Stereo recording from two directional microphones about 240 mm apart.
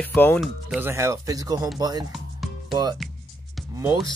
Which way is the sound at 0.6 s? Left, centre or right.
Centre.